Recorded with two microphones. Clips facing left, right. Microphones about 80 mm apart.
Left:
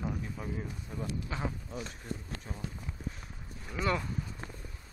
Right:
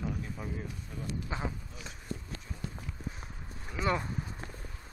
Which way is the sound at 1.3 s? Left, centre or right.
Right.